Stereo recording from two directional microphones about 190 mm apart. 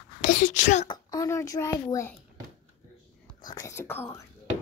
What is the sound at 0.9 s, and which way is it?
A child's voice, 20° left (ahead or behind).